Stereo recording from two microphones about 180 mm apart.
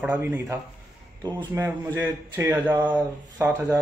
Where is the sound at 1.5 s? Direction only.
10° right (ahead or behind).